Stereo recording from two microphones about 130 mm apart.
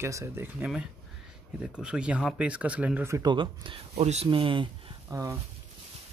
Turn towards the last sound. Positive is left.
turn(degrees=-25)  # may be behind; listen again after turning